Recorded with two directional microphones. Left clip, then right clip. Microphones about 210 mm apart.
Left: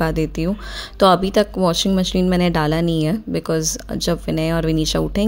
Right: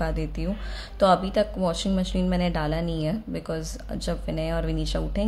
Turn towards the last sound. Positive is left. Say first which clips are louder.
# left 9 dB
turn(degrees=35)  # may be behind; listen again after turning